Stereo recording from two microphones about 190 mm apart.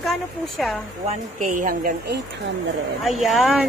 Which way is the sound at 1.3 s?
45° right (ahead or behind).